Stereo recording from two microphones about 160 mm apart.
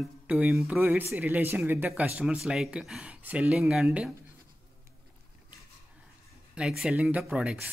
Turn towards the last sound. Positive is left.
turn(degrees=-5)  # may be behind; listen again after turning